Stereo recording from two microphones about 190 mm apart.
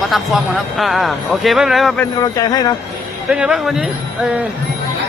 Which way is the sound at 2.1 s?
20° left (ahead or behind).